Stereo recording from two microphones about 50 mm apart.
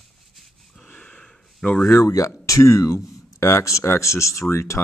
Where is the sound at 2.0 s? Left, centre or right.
Left.